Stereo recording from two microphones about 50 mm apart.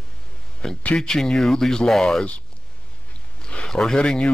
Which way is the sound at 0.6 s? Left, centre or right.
Centre.